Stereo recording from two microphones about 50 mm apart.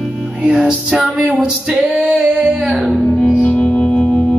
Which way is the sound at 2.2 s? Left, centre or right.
Centre.